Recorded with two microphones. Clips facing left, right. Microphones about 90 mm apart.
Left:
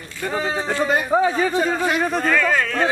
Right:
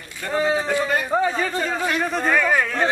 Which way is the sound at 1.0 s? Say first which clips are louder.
Left 3 dB; 10° left (ahead or behind).